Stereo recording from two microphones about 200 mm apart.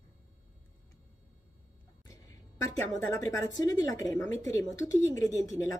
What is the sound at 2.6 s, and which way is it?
A woman's voice, 15° left (ahead or behind).